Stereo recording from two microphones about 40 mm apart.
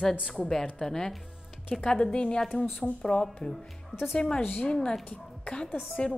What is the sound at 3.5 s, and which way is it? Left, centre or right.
Speech, centre.